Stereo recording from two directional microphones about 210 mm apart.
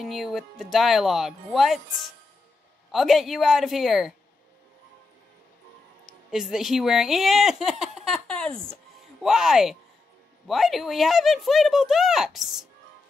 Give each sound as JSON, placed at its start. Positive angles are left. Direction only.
{"t": 0.0, "sound": "speech", "side_deg": 0}
{"t": 6.0, "sound": "speech", "side_deg": 0}